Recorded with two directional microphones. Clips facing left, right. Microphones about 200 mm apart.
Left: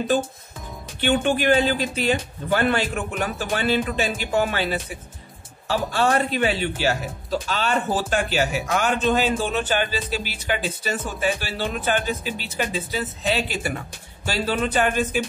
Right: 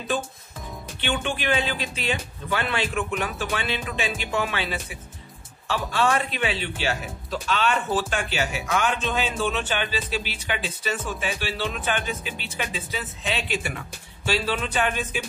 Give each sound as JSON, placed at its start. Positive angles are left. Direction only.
{"t": 1.0, "sound": "speech", "side_deg": 45}